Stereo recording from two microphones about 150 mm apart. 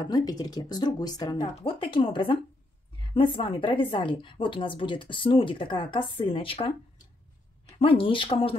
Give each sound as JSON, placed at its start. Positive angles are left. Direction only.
{"t": 0.0, "sound": "speech", "side_deg": 25}
{"t": 1.6, "sound": "a woman's voice", "side_deg": 35}
{"t": 7.8, "sound": "a woman's voice", "side_deg": 35}